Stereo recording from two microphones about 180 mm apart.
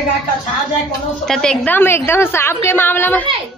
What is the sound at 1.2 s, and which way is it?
A woman's voice, 5° left (ahead or behind).